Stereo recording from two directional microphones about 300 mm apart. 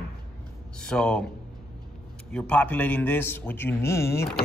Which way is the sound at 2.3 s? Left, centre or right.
Centre.